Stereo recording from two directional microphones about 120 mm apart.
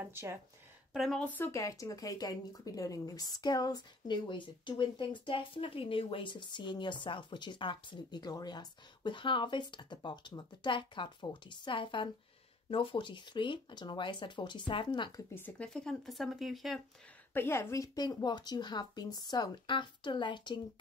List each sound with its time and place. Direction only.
0.0 s speech: 20° right (ahead or behind)
0.9 s speech: centre (ahead or behind)
1.2 s speech: 15° left (ahead or behind)
1.5 s speech: 25° left (ahead or behind)
15.3 s speech: 15° left (ahead or behind)
15.7 s speech: 5° left (ahead or behind)
17.3 s speech: 20° left (ahead or behind); by 20.6 s 40° left (ahead or behind)